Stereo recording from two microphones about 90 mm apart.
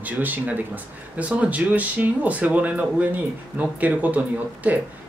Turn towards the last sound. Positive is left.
turn(degrees=-15)  # may be behind; listen again after turning